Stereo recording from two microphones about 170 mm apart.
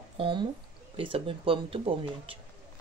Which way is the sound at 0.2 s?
30° right (ahead or behind).